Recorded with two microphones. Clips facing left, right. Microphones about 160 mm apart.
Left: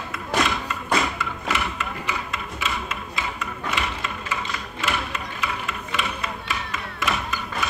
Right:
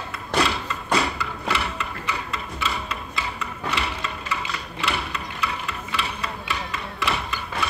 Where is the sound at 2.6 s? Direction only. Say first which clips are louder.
Even; 35° right (ahead or behind).